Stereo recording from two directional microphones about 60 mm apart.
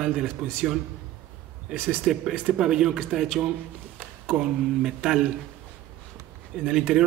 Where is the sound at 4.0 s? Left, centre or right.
Right.